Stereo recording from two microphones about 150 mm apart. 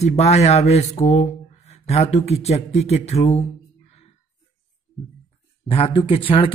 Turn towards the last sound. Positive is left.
turn(degrees=40)  # may be behind; listen again after turning